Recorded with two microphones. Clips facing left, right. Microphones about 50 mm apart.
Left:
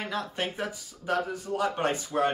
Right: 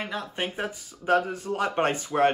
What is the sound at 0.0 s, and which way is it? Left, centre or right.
Speech, centre.